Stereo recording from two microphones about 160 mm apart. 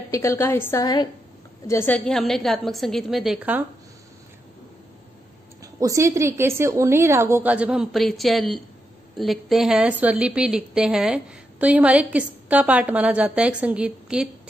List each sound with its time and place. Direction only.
0.1 s a woman's voice: 20° left (ahead or behind)
1.7 s a woman's voice: 10° left (ahead or behind); by 3.6 s 5° right (ahead or behind)
5.6 s a woman's voice: 20° right (ahead or behind); by 14.3 s 5° right (ahead or behind)